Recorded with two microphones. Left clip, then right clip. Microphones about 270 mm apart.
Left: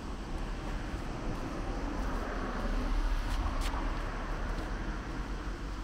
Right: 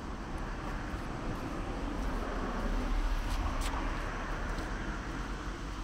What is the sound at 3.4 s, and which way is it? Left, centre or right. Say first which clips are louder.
Vehicle: right 1 dB; right.